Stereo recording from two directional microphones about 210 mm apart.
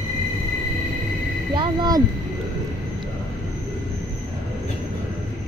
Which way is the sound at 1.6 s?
20° right (ahead or behind).